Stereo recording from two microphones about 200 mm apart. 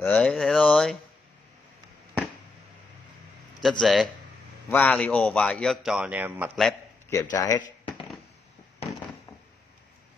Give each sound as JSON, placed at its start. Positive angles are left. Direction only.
{"t": 0.0, "sound": "a man's voice", "side_deg": 5}
{"t": 3.8, "sound": "a man's voice", "side_deg": 0}
{"t": 7.1, "sound": "speech", "side_deg": 15}